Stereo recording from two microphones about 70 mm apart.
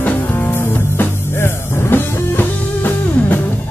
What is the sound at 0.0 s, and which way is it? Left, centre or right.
Music, left.